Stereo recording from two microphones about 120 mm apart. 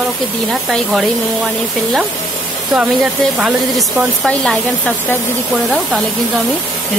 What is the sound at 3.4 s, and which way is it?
Speech, 5° right (ahead or behind).